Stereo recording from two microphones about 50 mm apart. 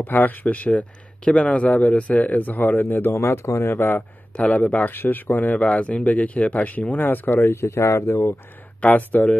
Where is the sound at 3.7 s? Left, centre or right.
Left.